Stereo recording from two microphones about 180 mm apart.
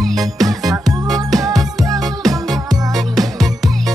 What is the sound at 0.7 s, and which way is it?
Music, 20° right (ahead or behind).